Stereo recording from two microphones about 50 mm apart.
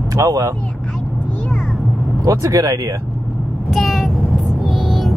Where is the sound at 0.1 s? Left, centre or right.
Right.